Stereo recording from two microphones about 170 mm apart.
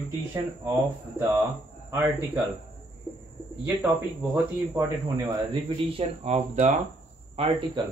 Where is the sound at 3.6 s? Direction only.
10° right (ahead or behind).